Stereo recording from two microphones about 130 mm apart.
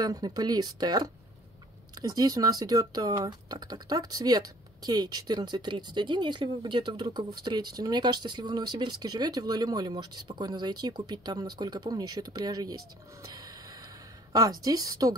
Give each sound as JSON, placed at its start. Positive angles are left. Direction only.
{"t": 0.0, "sound": "speech", "side_deg": -30}
{"t": 13.3, "sound": "gasp", "side_deg": -30}
{"t": 14.3, "sound": "speech", "side_deg": -30}